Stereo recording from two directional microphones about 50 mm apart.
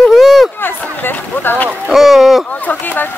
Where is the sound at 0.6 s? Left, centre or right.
Left.